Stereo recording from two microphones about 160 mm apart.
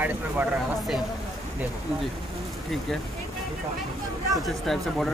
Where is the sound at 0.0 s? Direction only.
10° right (ahead or behind).